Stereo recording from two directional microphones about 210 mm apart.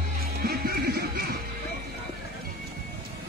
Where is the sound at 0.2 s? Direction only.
45° right (ahead or behind).